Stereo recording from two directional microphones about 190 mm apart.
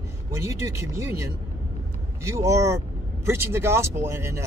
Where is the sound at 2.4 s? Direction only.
15° right (ahead or behind).